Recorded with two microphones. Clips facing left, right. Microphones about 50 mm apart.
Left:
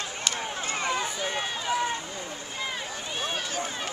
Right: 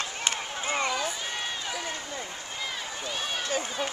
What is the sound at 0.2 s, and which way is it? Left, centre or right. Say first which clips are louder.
Run: left 2 dB; centre.